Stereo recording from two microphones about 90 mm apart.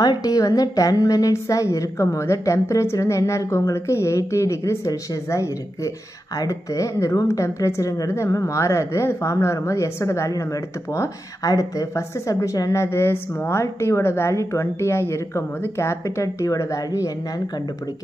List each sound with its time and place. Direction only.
0.0 s speech: 45° left (ahead or behind)